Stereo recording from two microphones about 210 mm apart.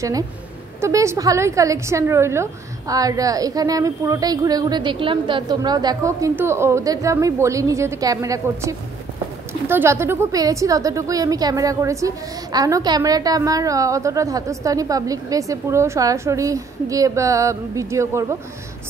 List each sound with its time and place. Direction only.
0.7 s a woman's voice: 15° right (ahead or behind)